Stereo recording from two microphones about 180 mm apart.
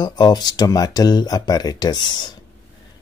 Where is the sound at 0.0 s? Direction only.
20° left (ahead or behind).